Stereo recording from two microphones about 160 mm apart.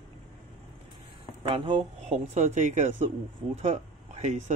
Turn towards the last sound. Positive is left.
turn(degrees=-45)  # may be behind; listen again after turning